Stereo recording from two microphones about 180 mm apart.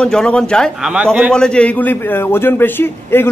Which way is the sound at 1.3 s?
5° left (ahead or behind).